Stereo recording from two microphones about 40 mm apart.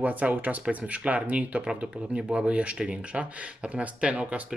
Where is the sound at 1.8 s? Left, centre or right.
Right.